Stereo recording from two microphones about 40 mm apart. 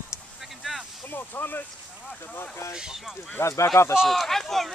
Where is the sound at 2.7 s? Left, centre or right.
Centre.